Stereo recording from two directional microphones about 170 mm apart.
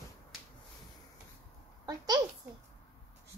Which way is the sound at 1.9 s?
20° right (ahead or behind).